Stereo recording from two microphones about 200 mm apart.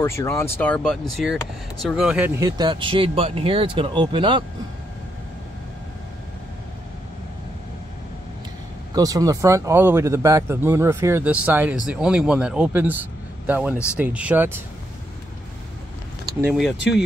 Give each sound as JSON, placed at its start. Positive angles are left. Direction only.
{"t": 0.0, "sound": "speech", "side_deg": 15}
{"t": 2.4, "sound": "speech", "side_deg": -20}
{"t": 8.9, "sound": "speech", "side_deg": -15}
{"t": 16.3, "sound": "vehicle", "side_deg": -15}